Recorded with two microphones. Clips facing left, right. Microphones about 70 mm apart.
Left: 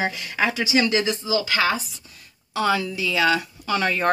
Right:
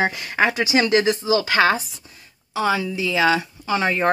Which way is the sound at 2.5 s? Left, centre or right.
Centre.